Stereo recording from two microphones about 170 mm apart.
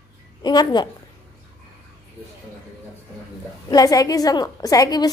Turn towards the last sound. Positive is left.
turn(degrees=20)  # may be behind; listen again after turning